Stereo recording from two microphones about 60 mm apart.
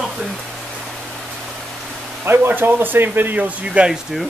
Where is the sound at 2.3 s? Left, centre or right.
Right.